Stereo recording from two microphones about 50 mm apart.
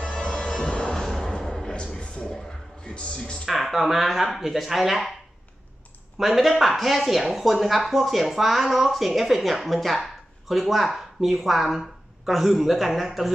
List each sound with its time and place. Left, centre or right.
0.0 s music: centre
1.0 s a sound: centre
2.8 s music: left
3.4 s speech: centre
6.1 s speech: centre